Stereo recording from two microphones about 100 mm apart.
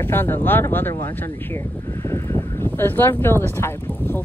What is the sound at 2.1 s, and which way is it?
Speech, 25° left (ahead or behind).